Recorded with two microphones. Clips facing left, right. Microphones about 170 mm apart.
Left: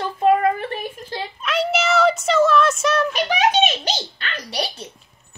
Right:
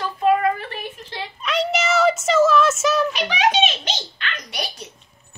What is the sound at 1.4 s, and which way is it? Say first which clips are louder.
Child singing: even; centre (ahead or behind).